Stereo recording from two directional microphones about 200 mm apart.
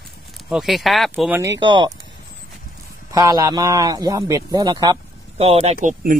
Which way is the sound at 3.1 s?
15° right (ahead or behind).